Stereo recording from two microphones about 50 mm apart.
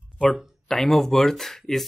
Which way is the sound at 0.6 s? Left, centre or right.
Centre.